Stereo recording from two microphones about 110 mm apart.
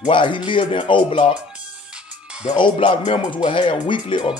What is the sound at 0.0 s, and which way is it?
Speech, 50° left (ahead or behind).